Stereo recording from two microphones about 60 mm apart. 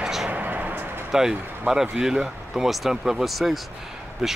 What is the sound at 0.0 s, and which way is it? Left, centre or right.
Vehicle, centre.